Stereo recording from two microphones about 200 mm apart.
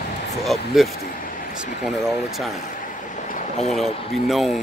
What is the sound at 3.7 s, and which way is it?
Speech, centre (ahead or behind).